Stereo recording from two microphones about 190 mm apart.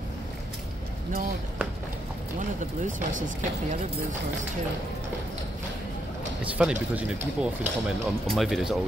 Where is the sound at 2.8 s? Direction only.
40° right (ahead or behind).